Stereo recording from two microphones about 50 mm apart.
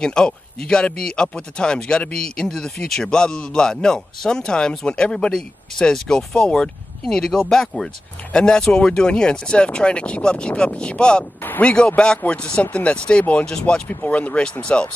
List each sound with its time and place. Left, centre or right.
0.0 s a man's voice: centre
13.8 s speech: left